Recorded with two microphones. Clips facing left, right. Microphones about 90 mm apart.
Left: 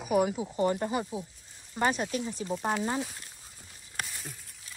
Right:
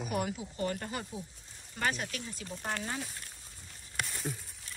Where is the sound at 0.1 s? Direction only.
15° left (ahead or behind).